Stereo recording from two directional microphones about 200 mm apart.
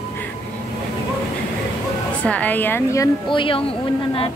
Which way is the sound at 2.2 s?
5° left (ahead or behind).